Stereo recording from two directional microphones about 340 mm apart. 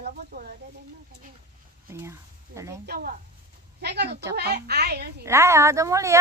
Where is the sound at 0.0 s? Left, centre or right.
Right.